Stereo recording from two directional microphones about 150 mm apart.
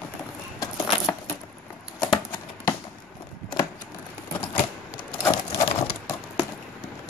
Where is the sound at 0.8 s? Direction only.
35° left (ahead or behind).